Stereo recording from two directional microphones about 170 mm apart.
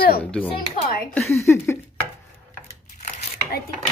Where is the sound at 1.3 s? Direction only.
15° left (ahead or behind).